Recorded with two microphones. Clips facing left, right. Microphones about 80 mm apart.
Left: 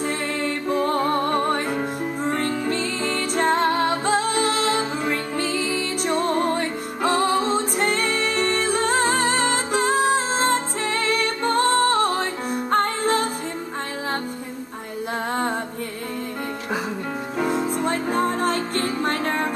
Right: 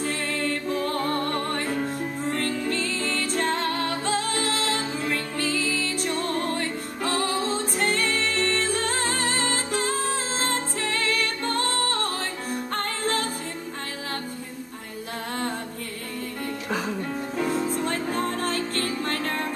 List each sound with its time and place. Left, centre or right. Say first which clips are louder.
0.0 s music: left 3 dB; centre
17.4 s music: left 3 dB; centre